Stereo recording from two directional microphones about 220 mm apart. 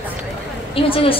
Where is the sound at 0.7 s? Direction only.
25° left (ahead or behind).